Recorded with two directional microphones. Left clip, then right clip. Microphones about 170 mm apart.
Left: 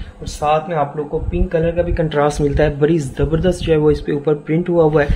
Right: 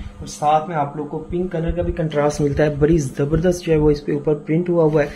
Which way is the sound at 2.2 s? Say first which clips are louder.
Left 2 dB; 25° left (ahead or behind).